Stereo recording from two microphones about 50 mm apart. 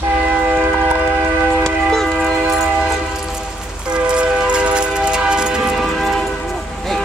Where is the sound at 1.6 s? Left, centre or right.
Centre.